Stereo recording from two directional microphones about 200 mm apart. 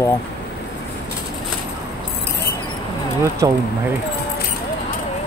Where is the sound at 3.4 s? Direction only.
15° right (ahead or behind).